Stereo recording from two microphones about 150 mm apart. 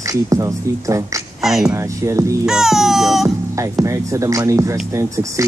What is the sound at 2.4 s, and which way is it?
Music, 5° right (ahead or behind).